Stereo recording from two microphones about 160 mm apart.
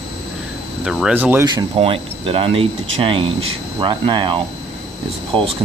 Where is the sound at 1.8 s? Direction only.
35° right (ahead or behind).